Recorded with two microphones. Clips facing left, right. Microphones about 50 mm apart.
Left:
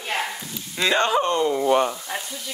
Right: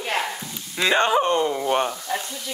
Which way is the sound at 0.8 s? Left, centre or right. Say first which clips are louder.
Right 1 dB; centre.